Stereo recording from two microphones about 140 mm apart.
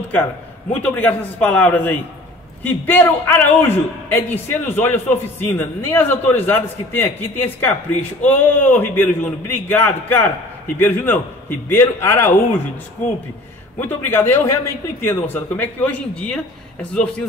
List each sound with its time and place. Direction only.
0.7 s a man's voice: 10° left (ahead or behind)
13.7 s a man's voice: 15° left (ahead or behind)